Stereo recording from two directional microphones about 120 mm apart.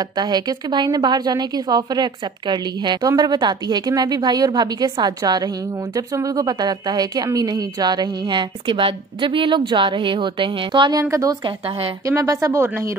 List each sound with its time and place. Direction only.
0.1 s a woman's voice: 35° right (ahead or behind)
11.4 s a woman's voice: 55° right (ahead or behind)
12.1 s speech: 25° right (ahead or behind)